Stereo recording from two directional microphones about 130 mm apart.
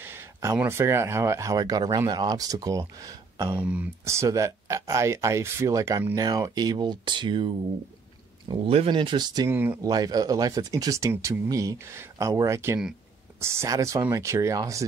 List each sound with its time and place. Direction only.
0.0 s a sound: 20° right (ahead or behind)
0.6 s speech: 20° right (ahead or behind)
3.6 s speech: 10° right (ahead or behind)
4.0 s speech: 20° right (ahead or behind)
9.5 s speech: 15° right (ahead or behind)
9.8 s speech: 30° right (ahead or behind)